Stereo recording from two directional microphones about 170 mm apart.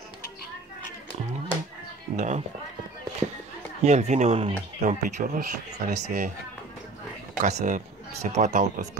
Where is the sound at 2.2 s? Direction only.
45° right (ahead or behind).